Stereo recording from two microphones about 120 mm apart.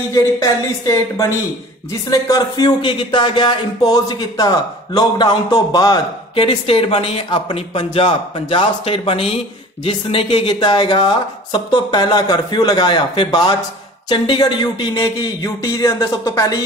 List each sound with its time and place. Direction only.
0.1 s speech: 25° left (ahead or behind)
6.3 s a man's voice: 50° left (ahead or behind); by 16.5 s 30° left (ahead or behind)